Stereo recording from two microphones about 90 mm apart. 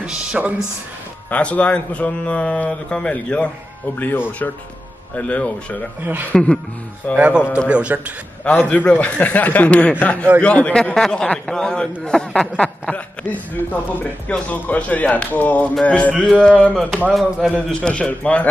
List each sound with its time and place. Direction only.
0.0 s speech: 10° right (ahead or behind)
1.3 s speech: 15° left (ahead or behind)
7.2 s a man's voice: 15° right (ahead or behind)
8.5 s speech: 15° left (ahead or behind)